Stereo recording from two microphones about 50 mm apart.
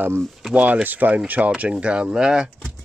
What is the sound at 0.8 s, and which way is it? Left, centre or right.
Speech, right.